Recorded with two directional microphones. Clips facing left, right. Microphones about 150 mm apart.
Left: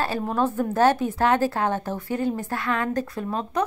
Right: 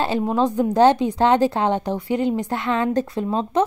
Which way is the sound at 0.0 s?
15° right (ahead or behind).